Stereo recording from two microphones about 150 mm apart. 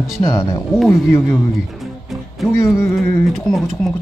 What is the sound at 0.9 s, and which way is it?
Speech, 15° left (ahead or behind).